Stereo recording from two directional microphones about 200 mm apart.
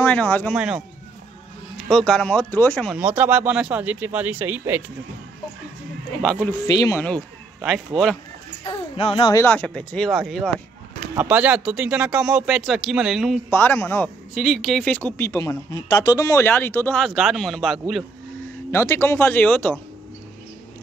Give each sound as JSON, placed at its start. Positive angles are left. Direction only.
{"t": 0.0, "sound": "speech", "side_deg": 5}
{"t": 0.6, "sound": "speech", "side_deg": -5}
{"t": 3.0, "sound": "speech", "side_deg": -10}
{"t": 6.7, "sound": "speech", "side_deg": 15}
{"t": 7.6, "sound": "speech", "side_deg": 0}
{"t": 8.6, "sound": "speech", "side_deg": 30}
{"t": 9.3, "sound": "speech", "side_deg": 10}
{"t": 13.5, "sound": "speech", "side_deg": 10}
{"t": 18.7, "sound": "speech", "side_deg": 10}